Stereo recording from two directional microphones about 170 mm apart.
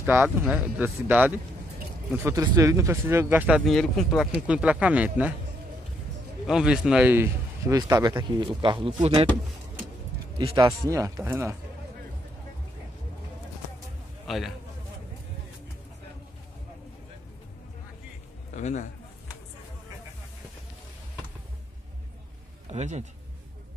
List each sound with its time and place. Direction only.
0.0 s speech: 15° right (ahead or behind)
6.4 s a man's voice: 5° right (ahead or behind); by 9.3 s 30° right (ahead or behind)
10.3 s a man's voice: 25° right (ahead or behind)
14.2 s a man's voice: centre (ahead or behind)
18.5 s a man's voice: 45° left (ahead or behind)
22.7 s a man's voice: 40° right (ahead or behind)